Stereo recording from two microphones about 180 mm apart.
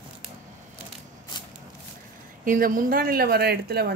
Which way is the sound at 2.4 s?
50° right (ahead or behind).